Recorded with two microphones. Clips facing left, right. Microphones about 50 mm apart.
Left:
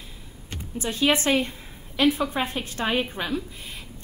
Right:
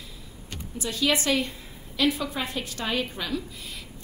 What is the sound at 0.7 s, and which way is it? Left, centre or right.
A woman's voice, left.